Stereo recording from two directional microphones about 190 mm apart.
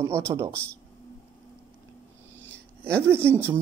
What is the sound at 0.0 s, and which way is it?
Speech, 15° right (ahead or behind).